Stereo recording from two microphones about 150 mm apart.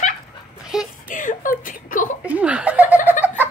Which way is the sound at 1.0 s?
60° left (ahead or behind).